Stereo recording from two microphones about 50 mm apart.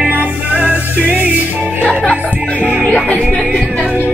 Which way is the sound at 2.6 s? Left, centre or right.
Right.